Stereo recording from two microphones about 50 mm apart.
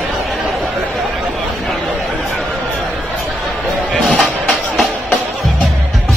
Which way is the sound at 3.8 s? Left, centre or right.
Left.